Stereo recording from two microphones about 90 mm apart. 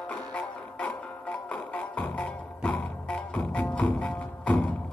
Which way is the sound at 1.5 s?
15° left (ahead or behind).